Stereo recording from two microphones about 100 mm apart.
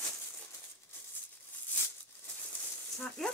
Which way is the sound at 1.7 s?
20° left (ahead or behind).